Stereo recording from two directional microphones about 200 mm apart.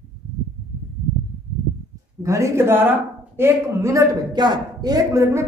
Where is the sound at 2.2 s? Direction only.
15° right (ahead or behind).